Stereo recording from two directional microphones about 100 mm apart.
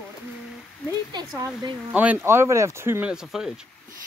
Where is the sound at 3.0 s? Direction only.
5° right (ahead or behind).